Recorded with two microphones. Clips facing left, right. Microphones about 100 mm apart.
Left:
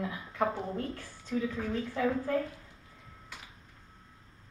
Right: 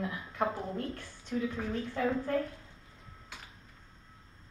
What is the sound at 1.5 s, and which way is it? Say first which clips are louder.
Speech: left 1 dB; 20° right (ahead or behind).